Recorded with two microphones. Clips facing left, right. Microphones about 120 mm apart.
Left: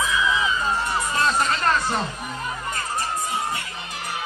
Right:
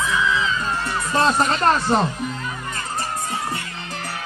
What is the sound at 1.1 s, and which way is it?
Speech, 35° right (ahead or behind).